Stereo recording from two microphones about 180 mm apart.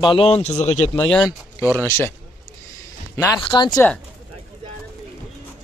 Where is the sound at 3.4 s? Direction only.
25° left (ahead or behind).